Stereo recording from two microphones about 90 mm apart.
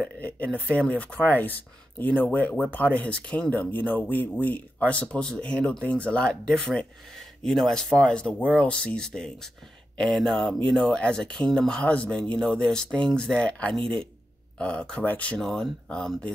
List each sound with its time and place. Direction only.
0.0 s speech: 15° left (ahead or behind)